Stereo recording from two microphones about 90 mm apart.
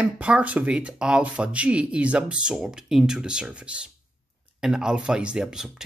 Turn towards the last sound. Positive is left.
turn(degrees=-5)  # may be behind; listen again after turning